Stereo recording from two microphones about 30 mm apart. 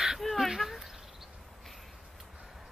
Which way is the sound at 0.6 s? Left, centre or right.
Centre.